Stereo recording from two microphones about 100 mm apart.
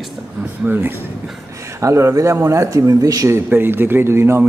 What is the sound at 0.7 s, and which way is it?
A man's voice, 20° right (ahead or behind).